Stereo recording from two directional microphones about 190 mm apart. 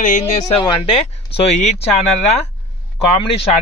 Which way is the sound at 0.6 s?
30° left (ahead or behind).